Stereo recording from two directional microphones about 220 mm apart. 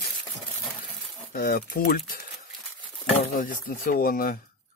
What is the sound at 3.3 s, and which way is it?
Speech, 40° left (ahead or behind).